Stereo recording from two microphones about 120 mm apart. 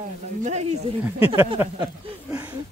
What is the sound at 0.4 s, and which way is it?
Speech, 75° right (ahead or behind).